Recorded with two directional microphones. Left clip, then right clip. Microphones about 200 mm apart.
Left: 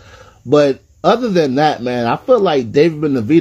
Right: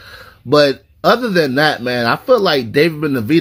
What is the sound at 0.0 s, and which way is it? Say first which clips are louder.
Speech: right 2 dB; 25° right (ahead or behind).